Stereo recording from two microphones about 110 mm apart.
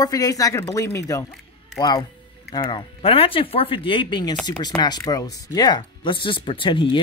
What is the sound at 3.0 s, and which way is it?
Speech, 55° left (ahead or behind).